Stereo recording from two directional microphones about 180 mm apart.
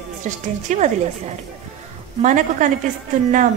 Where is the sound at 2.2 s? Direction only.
45° right (ahead or behind).